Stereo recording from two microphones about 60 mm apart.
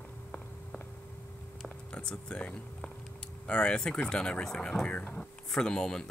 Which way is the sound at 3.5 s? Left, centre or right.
Centre.